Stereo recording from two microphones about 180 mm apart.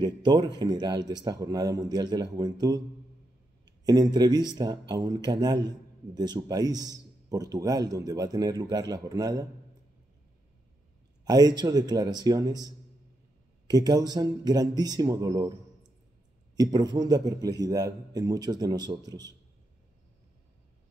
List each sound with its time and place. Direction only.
0.0 s a man's voice: 25° right (ahead or behind)
3.8 s a man's voice: 20° right (ahead or behind)
11.2 s a man's voice: 20° right (ahead or behind)
16.5 s a man's voice: 20° right (ahead or behind)